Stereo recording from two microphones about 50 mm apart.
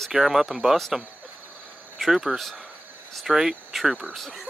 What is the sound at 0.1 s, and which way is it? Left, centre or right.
Speech, centre.